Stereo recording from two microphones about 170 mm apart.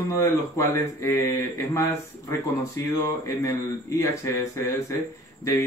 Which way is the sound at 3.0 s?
20° left (ahead or behind).